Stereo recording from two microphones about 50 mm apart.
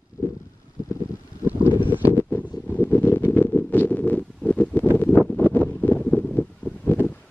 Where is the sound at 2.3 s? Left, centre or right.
Left.